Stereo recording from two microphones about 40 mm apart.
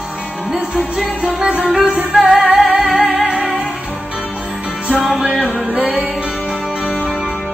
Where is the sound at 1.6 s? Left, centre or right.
Centre.